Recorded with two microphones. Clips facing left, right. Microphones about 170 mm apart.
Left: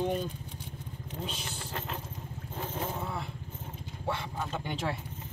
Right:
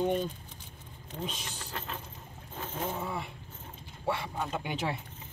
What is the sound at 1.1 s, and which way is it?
Speech, 5° left (ahead or behind).